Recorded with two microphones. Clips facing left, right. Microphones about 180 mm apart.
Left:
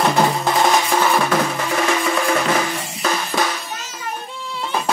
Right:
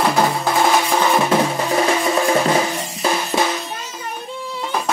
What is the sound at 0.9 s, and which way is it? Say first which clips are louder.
Drum: right 1 dB; 20° right (ahead or behind).